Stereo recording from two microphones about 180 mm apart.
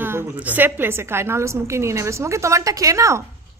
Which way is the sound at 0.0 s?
10° right (ahead or behind).